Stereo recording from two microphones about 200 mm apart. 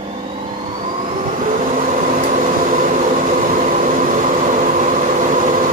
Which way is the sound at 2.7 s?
40° right (ahead or behind).